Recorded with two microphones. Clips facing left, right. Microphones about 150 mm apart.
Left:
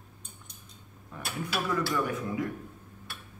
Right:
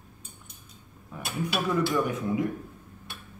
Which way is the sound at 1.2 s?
20° right (ahead or behind).